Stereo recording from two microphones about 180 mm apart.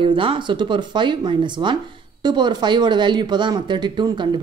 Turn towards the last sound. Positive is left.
turn(degrees=-25)  # may be behind; listen again after turning